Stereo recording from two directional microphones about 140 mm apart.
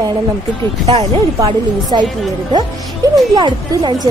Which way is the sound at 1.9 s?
35° right (ahead or behind).